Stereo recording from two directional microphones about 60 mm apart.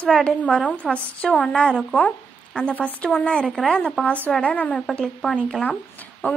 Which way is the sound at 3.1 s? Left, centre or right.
Centre.